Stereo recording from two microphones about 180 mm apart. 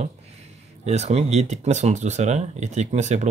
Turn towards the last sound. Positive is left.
turn(degrees=-40)  # may be behind; listen again after turning